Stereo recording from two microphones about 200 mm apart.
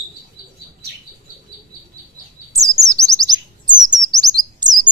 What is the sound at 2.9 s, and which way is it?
Chirp, 15° right (ahead or behind).